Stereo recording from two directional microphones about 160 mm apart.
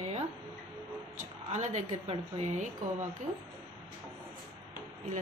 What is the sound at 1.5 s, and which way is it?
Speech, 45° right (ahead or behind).